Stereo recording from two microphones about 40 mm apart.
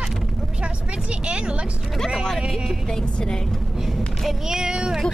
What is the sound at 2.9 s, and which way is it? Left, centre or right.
Speech, centre.